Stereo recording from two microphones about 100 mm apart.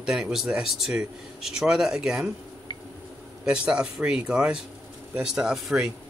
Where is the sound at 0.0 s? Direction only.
5° right (ahead or behind).